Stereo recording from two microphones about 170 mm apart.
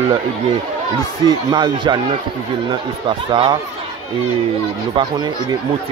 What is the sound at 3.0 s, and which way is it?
Speech, 25° right (ahead or behind).